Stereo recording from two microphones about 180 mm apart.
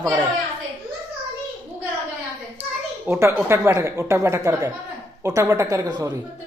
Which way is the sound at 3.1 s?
15° right (ahead or behind).